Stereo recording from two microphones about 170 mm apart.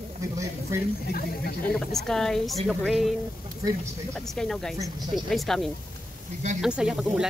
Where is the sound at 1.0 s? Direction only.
60° left (ahead or behind).